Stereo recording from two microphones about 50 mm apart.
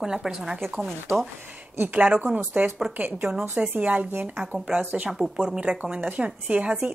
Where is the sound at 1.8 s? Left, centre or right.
Right.